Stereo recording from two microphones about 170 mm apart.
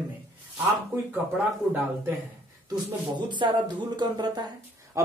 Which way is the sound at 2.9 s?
25° right (ahead or behind).